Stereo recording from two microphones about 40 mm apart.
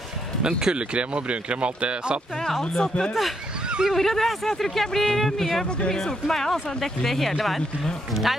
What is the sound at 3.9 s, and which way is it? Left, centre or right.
Speech, centre.